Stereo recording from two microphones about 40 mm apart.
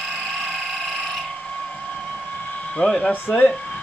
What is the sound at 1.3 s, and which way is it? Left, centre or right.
Mechanisms, left.